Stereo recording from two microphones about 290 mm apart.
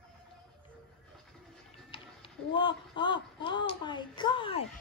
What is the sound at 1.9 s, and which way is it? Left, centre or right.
Speech, centre.